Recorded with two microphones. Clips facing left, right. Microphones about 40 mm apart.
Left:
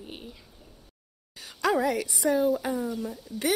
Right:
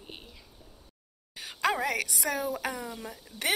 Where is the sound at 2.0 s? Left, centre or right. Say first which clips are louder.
Left 6 dB; right.